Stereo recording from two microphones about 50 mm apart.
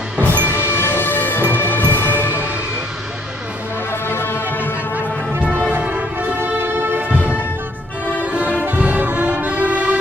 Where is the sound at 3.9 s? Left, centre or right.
Left.